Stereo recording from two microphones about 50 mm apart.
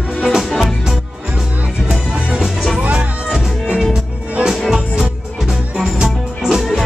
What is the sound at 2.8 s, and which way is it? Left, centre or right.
Music, right.